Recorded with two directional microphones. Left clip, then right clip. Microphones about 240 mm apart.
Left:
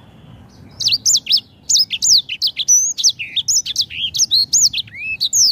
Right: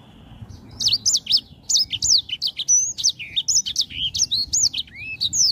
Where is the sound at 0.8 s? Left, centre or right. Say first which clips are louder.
Left 4 dB; centre.